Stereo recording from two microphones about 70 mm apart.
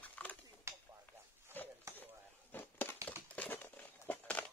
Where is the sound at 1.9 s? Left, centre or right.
Right.